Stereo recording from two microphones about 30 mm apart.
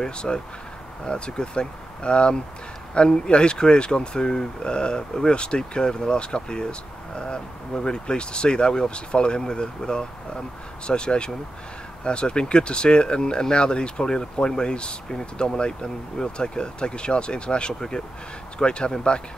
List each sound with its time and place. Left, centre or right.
0.0 s speech: left
17.7 s speech: centre
18.6 s speech: left